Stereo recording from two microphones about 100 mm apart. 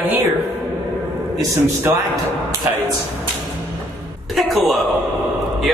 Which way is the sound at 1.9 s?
20° right (ahead or behind).